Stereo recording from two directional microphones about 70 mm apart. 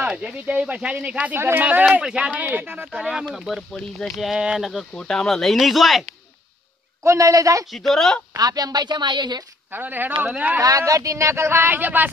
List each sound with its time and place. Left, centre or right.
0.0 s speech: centre
1.3 s speech: right
2.9 s speech: centre
4.9 s speech: centre
7.0 s a man's voice: right
7.7 s speech: centre
8.4 s a woman's voice: right
9.7 s speech: right
10.6 s speech: right